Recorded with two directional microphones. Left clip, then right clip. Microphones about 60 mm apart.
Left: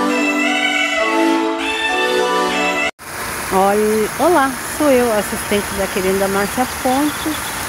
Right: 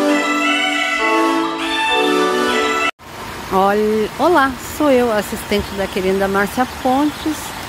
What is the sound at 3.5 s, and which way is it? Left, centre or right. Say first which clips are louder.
Speech: even; right.